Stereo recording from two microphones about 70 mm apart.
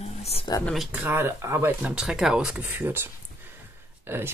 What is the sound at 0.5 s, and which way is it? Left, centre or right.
Speech, left.